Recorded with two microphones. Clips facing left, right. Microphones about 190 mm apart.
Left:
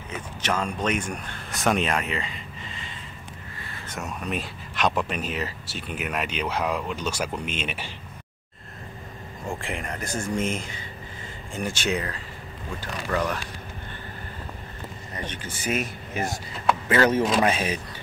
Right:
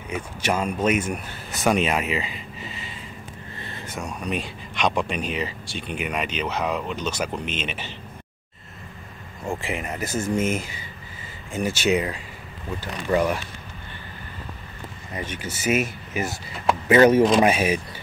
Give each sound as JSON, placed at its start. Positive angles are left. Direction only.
{"t": 0.4, "sound": "speech", "side_deg": -10}
{"t": 3.9, "sound": "speech", "side_deg": 0}
{"t": 9.5, "sound": "speech", "side_deg": 0}
{"t": 15.1, "sound": "speech", "side_deg": -10}
{"t": 16.9, "sound": "speech", "side_deg": -20}